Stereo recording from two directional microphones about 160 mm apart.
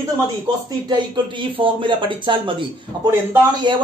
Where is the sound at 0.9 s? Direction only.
30° right (ahead or behind).